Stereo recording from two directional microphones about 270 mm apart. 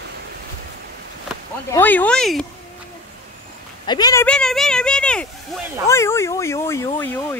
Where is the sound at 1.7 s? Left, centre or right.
Centre.